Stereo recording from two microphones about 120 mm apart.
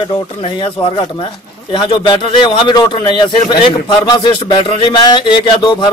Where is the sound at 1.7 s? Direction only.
45° left (ahead or behind).